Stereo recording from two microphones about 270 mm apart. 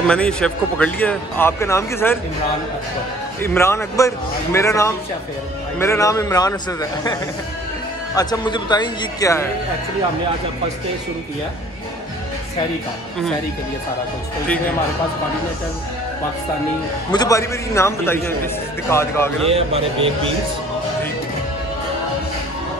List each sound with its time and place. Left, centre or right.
0.0 s speech: centre
3.4 s speech: centre
17.1 s speech: centre
19.5 s speech: right